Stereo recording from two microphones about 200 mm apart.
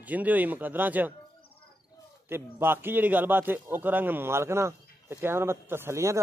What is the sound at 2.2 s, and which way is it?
A man's voice, 10° right (ahead or behind).